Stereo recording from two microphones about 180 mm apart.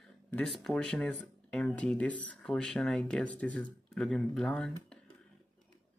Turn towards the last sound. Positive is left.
turn(degrees=5)  # may be behind; listen again after turning